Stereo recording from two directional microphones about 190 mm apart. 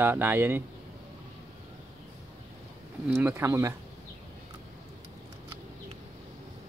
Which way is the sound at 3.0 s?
10° right (ahead or behind).